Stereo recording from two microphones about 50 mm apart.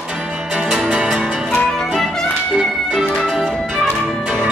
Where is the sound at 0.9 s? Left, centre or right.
Centre.